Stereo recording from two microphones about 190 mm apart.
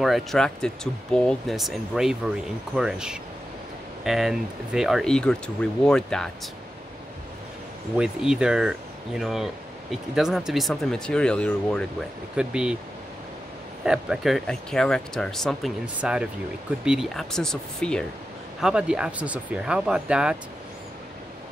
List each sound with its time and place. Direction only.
0.0 s speech: centre (ahead or behind)
8.0 s speech: 5° right (ahead or behind)
13.8 s speech: 5° right (ahead or behind)